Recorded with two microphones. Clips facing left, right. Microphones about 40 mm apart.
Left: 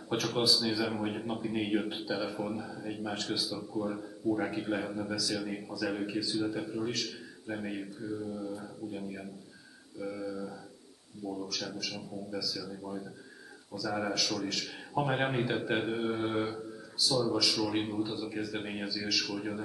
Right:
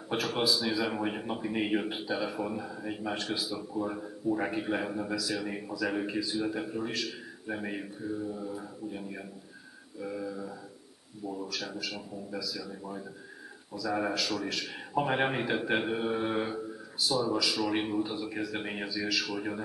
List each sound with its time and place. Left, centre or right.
0.1 s a man's voice: centre